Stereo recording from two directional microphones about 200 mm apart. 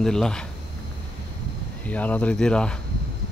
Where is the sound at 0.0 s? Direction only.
5° left (ahead or behind).